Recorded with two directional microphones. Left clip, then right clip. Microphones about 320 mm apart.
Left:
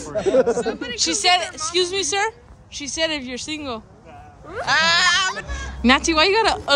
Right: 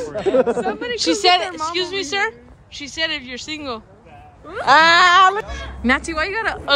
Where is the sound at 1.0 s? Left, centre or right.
Centre.